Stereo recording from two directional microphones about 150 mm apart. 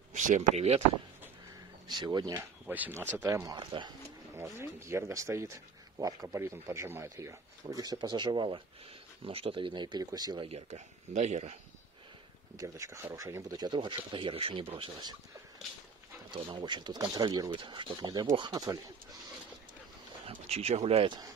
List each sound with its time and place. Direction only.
0.1 s speech: 60° right (ahead or behind)
1.9 s speech: 30° right (ahead or behind)
2.6 s speech: 10° right (ahead or behind); by 3.9 s 30° right (ahead or behind)
4.4 s speech: 15° right (ahead or behind); by 11.5 s 50° right (ahead or behind)
12.5 s speech: 20° right (ahead or behind)
16.3 s speech: 30° right (ahead or behind)
20.2 s speech: 45° right (ahead or behind)